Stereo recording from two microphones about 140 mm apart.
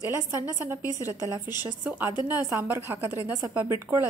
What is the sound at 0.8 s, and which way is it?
Speech, 25° left (ahead or behind).